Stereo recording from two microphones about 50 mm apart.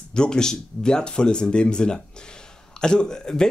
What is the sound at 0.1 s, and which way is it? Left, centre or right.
Speech, centre.